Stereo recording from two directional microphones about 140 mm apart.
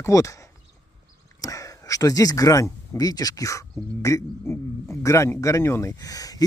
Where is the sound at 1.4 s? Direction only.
25° left (ahead or behind).